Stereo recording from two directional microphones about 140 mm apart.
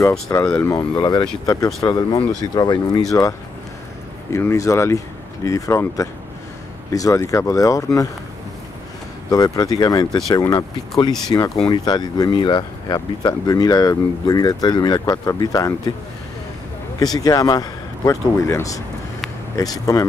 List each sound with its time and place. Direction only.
0.3 s speech: 20° left (ahead or behind)
9.3 s speech: 30° left (ahead or behind)
17.0 s speech: 25° left (ahead or behind)